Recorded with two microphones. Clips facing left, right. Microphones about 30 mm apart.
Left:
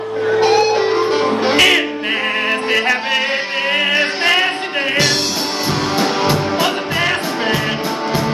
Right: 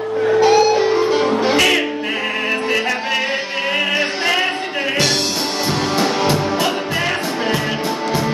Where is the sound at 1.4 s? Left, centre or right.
Left.